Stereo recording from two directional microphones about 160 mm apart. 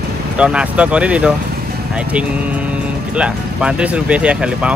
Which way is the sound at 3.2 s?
5° right (ahead or behind).